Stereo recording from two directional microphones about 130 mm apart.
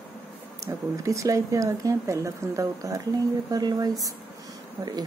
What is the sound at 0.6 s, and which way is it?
Speech, 25° right (ahead or behind).